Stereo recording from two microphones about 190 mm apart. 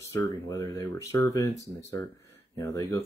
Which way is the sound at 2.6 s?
15° left (ahead or behind).